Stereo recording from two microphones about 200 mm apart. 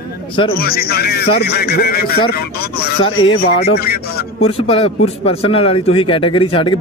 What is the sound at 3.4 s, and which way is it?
Speech, 50° left (ahead or behind).